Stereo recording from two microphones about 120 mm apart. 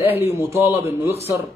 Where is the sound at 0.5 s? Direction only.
20° right (ahead or behind).